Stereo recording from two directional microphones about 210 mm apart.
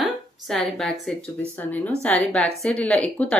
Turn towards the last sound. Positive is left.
turn(degrees=5)  # may be behind; listen again after turning